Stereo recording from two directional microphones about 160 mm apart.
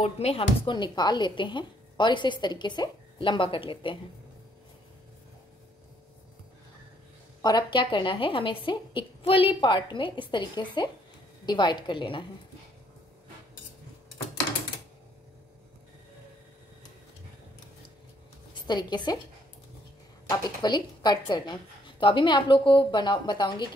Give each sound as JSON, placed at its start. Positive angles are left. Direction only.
{"t": 0.0, "sound": "speech", "side_deg": 40}
{"t": 7.4, "sound": "a woman's voice", "side_deg": 30}
{"t": 18.5, "sound": "a woman's voice", "side_deg": 25}
{"t": 20.2, "sound": "speech", "side_deg": 25}